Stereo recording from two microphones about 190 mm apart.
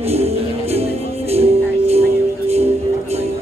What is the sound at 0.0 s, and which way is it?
Music, 35° right (ahead or behind).